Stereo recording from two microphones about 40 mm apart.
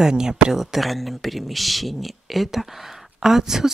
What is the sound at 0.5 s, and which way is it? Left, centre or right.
Speech, centre.